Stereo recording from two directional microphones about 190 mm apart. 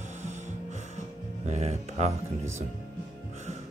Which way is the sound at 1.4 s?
35° right (ahead or behind).